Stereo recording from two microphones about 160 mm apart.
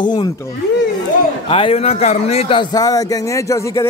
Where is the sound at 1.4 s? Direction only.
35° left (ahead or behind).